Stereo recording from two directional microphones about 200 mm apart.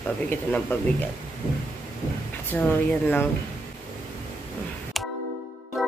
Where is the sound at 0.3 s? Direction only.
10° left (ahead or behind).